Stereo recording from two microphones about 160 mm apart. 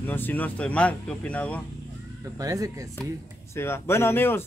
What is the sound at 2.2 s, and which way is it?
Speech, 20° right (ahead or behind).